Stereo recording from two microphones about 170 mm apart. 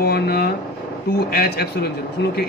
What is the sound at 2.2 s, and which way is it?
Speech, 90° left.